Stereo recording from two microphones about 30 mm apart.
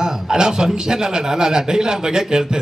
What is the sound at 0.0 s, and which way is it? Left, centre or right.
A man's voice, right.